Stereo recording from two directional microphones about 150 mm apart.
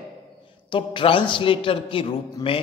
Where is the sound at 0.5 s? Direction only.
35° left (ahead or behind).